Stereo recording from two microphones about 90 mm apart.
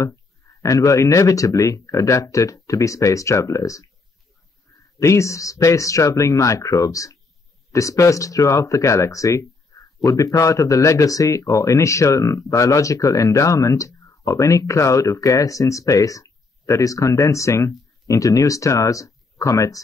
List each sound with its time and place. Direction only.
0.0 s speech: 35° left (ahead or behind)
4.9 s speech: 35° left (ahead or behind)